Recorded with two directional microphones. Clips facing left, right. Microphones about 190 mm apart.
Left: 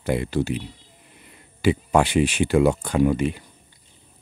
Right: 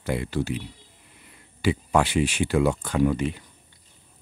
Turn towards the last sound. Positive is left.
turn(degrees=10)  # may be behind; listen again after turning